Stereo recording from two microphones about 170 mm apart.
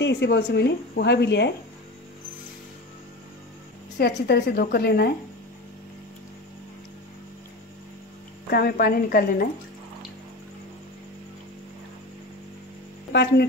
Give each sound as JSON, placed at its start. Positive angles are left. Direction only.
{"t": 0.0, "sound": "speech", "side_deg": 90}
{"t": 4.0, "sound": "a woman's voice", "side_deg": 70}
{"t": 8.5, "sound": "a woman's voice", "side_deg": 60}
{"t": 13.1, "sound": "a woman's voice", "side_deg": 70}